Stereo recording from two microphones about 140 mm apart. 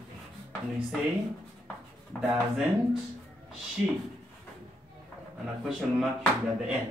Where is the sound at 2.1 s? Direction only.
10° left (ahead or behind).